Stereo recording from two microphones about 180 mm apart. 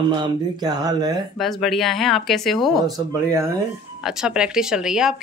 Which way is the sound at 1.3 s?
Centre (ahead or behind).